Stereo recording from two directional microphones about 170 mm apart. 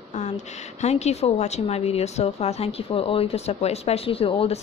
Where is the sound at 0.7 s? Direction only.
40° left (ahead or behind).